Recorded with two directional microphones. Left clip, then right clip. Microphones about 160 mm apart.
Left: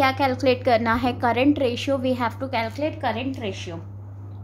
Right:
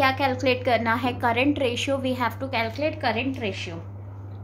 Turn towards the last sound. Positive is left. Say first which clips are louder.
# right 1 dB
turn(degrees=15)  # may be behind; listen again after turning